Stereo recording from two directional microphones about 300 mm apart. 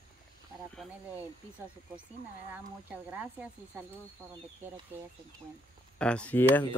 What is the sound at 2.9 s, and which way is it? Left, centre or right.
Speech, centre.